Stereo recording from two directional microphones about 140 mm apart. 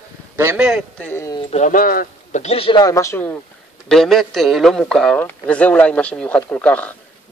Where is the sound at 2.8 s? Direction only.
25° left (ahead or behind).